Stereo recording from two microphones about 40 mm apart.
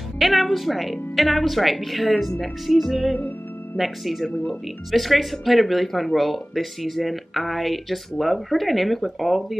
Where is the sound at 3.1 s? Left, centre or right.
Left.